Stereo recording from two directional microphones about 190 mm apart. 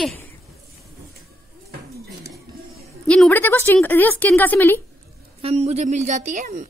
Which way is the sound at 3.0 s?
5° left (ahead or behind).